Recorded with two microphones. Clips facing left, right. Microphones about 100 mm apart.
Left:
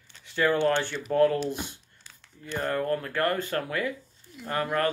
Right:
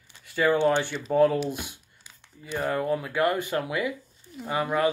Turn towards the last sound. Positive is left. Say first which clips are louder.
# right 2 dB
turn(degrees=-10)  # may be behind; listen again after turning